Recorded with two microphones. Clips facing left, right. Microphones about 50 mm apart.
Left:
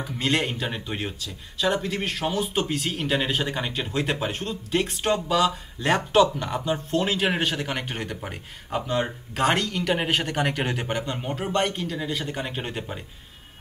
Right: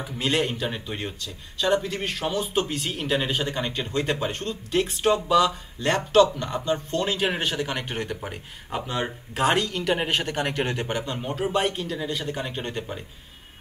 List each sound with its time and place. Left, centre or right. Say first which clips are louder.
0.2 s speech: right 1 dB; centre